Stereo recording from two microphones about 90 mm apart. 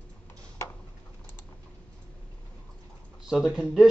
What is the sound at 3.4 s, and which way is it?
Speech, 10° right (ahead or behind).